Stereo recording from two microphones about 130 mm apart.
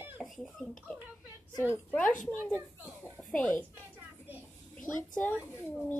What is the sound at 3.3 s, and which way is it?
Speech, 15° left (ahead or behind).